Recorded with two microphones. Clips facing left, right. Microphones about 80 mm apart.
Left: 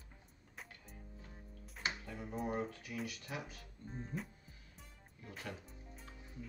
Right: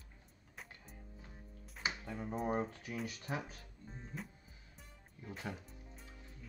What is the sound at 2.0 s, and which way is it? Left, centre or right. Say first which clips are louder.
Speech: right 3 dB; right.